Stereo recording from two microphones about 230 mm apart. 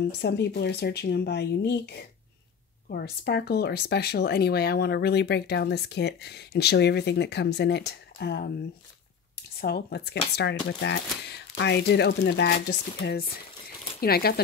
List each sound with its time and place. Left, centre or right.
0.0 s speech: left
9.6 s speech: left